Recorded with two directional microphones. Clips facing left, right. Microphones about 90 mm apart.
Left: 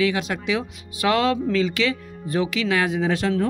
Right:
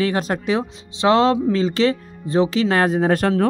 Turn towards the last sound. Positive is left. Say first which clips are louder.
# right 4 dB
turn(degrees=-50)  # may be behind; listen again after turning